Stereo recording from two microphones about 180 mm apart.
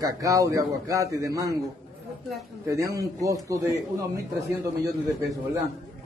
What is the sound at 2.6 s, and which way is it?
A man's voice, 20° right (ahead or behind).